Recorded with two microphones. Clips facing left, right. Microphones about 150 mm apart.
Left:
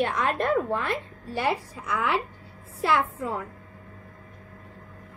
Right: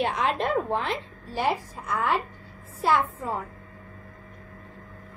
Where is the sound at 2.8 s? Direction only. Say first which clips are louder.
Right 1 dB; 60° left (ahead or behind).